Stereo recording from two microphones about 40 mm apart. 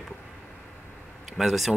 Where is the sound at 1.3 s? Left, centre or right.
Centre.